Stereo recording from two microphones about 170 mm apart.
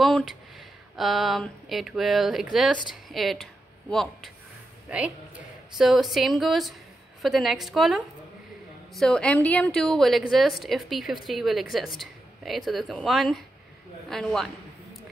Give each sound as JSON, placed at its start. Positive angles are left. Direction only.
{"t": 0.0, "sound": "a woman's voice", "side_deg": 0}